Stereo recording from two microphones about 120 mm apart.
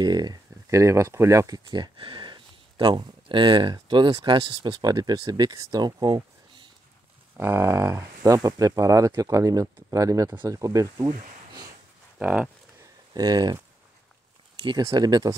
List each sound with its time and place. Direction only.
0.0 s speech: 35° right (ahead or behind)
7.3 s speech: 20° right (ahead or behind)
12.2 s speech: 10° right (ahead or behind)
13.1 s speech: 35° right (ahead or behind)
14.6 s speech: 35° right (ahead or behind)